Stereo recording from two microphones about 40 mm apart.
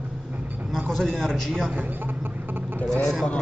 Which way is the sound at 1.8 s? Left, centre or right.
Right.